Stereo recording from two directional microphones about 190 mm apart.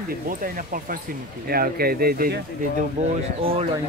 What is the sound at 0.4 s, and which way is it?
Speech, 45° right (ahead or behind).